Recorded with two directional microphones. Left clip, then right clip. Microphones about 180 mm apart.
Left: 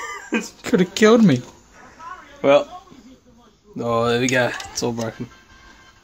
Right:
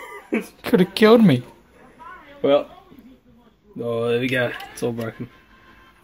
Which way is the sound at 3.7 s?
45° left (ahead or behind).